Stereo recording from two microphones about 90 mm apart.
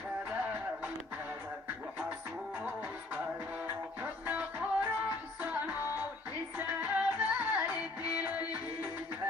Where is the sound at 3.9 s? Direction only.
15° right (ahead or behind).